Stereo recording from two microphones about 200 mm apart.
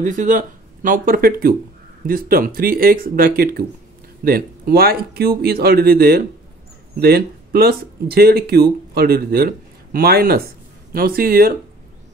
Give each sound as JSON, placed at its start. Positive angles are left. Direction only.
{"t": 0.0, "sound": "speech", "side_deg": -40}